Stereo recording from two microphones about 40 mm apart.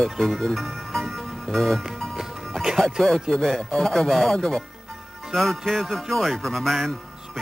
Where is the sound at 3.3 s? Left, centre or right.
Centre.